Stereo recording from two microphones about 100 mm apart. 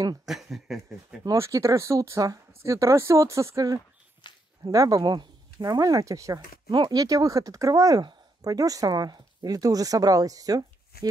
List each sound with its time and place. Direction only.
0.2 s speech: 5° right (ahead or behind)
1.2 s speech: 30° right (ahead or behind)
4.2 s a sound: 50° left (ahead or behind)
4.6 s speech: 35° right (ahead or behind)
6.7 s speech: 50° right (ahead or behind)